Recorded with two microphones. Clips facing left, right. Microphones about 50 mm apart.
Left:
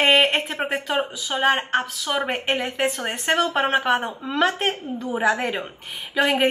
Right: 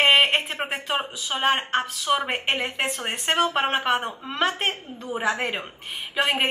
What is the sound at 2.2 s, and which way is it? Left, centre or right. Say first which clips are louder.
Speech: left 2 dB; right.